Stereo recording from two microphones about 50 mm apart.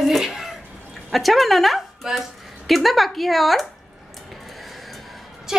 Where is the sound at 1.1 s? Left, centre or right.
Centre.